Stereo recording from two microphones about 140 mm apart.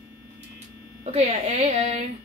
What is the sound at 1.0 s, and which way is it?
A child's voice, 50° right (ahead or behind).